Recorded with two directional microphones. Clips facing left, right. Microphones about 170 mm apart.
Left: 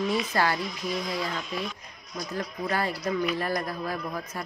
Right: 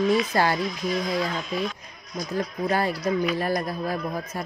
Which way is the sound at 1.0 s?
45° right (ahead or behind).